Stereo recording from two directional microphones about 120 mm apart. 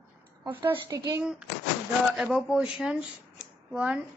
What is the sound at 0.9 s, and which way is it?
Speech, 30° right (ahead or behind).